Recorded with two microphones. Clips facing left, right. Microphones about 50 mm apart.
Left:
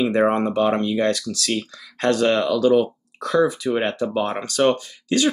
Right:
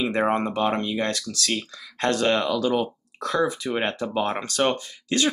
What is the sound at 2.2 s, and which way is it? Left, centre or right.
Speech, right.